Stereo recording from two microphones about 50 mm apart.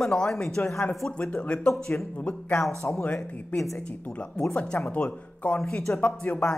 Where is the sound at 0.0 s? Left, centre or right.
Centre; by 2.0 s left.